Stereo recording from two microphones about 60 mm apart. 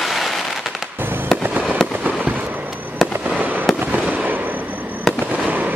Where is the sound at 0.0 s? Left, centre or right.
Centre.